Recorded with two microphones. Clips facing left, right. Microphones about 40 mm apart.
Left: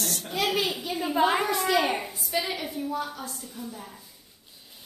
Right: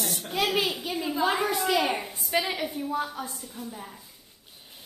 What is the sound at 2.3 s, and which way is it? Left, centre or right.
Speech, right.